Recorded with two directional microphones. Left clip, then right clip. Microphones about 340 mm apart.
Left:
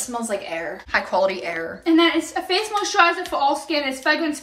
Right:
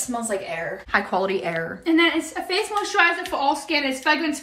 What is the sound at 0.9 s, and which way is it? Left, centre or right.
A woman's voice, centre.